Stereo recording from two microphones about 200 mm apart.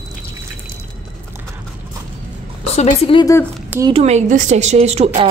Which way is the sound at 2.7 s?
30° left (ahead or behind).